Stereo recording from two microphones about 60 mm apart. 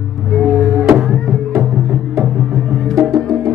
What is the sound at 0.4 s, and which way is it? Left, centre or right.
Music, centre.